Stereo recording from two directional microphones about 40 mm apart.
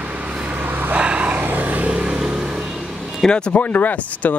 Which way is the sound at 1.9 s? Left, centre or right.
Right.